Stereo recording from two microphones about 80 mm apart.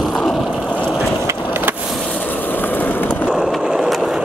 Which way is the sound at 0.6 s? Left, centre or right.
Centre.